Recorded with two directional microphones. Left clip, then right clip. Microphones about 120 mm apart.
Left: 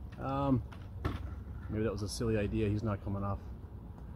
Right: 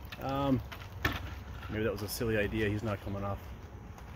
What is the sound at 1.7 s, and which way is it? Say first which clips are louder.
Speech: right 2 dB; 15° left (ahead or behind).